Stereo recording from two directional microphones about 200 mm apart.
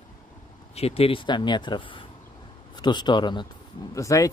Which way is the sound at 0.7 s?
30° left (ahead or behind).